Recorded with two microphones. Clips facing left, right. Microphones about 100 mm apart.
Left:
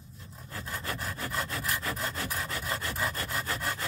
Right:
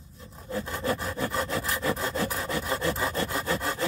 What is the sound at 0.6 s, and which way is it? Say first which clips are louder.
Sawing: right 8 dB; 25° right (ahead or behind).